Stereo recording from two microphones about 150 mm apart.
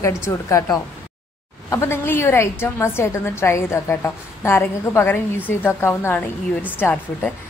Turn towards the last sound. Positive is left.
turn(degrees=15)  # may be behind; listen again after turning